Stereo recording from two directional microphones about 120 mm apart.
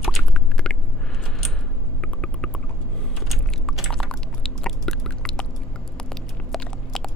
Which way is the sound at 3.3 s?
Centre (ahead or behind).